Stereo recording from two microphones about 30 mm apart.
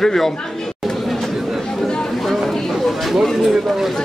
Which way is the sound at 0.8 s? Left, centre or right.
Centre.